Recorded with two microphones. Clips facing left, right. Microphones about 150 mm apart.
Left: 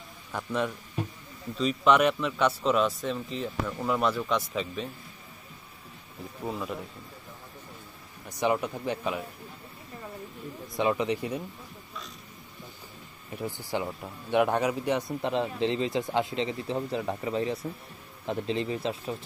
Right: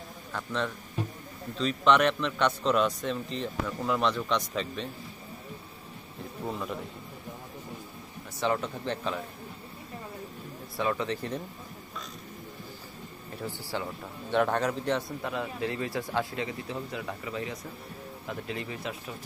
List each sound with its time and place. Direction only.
0.3 s a man's voice: 10° left (ahead or behind)
6.4 s speech: 5° left (ahead or behind)
8.4 s a man's voice: 15° left (ahead or behind)
10.8 s a man's voice: 15° left (ahead or behind)
13.4 s a man's voice: 15° left (ahead or behind)
15.2 s speech: 25° left (ahead or behind)